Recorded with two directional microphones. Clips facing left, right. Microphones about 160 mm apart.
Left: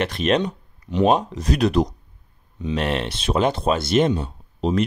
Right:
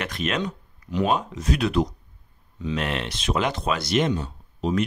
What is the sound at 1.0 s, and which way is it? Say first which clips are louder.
Speech: left 6 dB; 35° left (ahead or behind).